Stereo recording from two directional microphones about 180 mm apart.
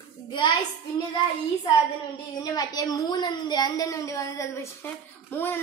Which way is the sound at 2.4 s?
20° left (ahead or behind).